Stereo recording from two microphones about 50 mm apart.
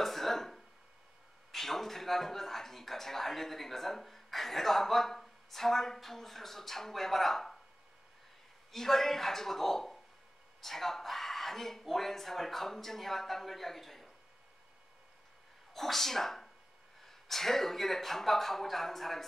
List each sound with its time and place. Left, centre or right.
0.0 s a sound: centre
1.5 s a man's voice: centre
8.7 s a man's voice: centre
15.7 s speech: centre